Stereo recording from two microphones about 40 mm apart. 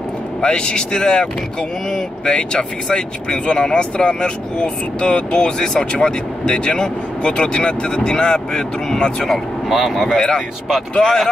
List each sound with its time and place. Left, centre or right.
0.4 s speech: left
9.7 s speech: centre
10.1 s speech: centre